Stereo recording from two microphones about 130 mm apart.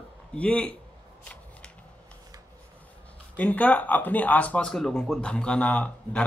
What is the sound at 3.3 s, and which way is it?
Speech, 10° left (ahead or behind).